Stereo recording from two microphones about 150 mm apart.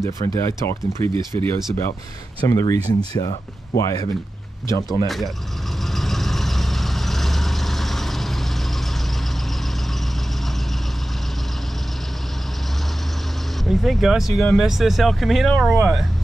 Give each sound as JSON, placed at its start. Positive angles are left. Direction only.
{"t": 0.0, "sound": "speech", "side_deg": 20}
{"t": 5.0, "sound": "speech", "side_deg": 0}
{"t": 5.9, "sound": "vehicle", "side_deg": 0}
{"t": 13.7, "sound": "speech", "side_deg": 0}